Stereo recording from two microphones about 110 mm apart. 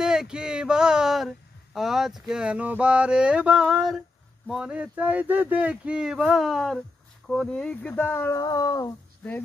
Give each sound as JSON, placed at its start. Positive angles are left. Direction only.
{"t": 0.0, "sound": "speech", "side_deg": -5}
{"t": 7.9, "sound": "speech", "side_deg": 20}
{"t": 8.4, "sound": "a sound", "side_deg": 35}
{"t": 9.2, "sound": "speech", "side_deg": 10}